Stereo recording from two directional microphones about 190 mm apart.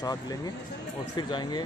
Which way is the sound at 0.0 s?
20° left (ahead or behind).